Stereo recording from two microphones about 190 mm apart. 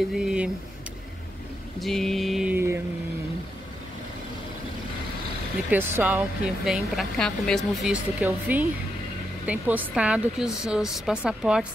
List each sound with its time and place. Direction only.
0.1 s speech: 5° right (ahead or behind)
1.8 s a sound: centre (ahead or behind)
5.7 s speech: 10° right (ahead or behind)